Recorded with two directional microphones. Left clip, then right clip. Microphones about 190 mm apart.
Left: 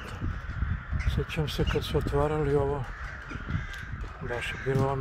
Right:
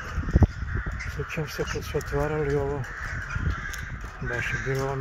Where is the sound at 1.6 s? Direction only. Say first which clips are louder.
Left 1 dB; 10° left (ahead or behind).